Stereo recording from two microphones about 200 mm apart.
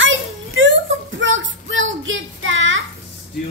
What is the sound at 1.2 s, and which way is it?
Child singing, 70° right (ahead or behind).